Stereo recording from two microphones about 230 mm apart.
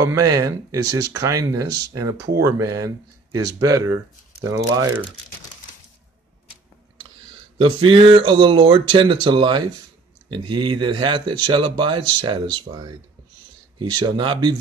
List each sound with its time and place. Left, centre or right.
0.0 s speech: centre
7.5 s speech: right